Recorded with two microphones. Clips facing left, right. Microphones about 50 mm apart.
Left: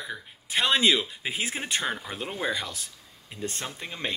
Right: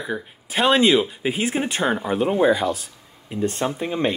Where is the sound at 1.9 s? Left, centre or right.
Right.